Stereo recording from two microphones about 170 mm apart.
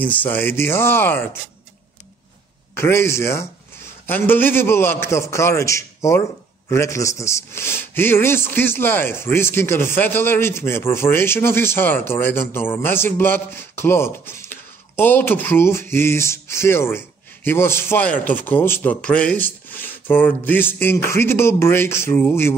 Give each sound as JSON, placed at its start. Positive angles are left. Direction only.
{"t": 0.0, "sound": "a man's voice", "side_deg": 10}
{"t": 2.7, "sound": "a man's voice", "side_deg": 15}